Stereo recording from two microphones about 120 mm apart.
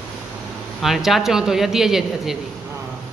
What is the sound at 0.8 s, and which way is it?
A man's voice, centre (ahead or behind).